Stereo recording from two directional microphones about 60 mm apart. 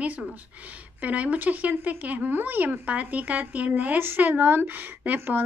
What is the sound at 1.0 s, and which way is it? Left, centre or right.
Speech, right.